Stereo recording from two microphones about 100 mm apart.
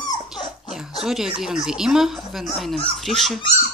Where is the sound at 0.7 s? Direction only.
5° right (ahead or behind).